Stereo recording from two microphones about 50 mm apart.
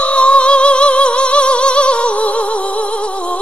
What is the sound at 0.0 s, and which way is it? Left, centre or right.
Singing, left.